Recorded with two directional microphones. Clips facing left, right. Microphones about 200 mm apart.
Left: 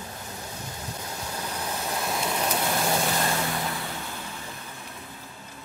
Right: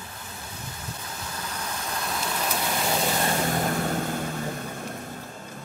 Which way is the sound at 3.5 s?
45° right (ahead or behind).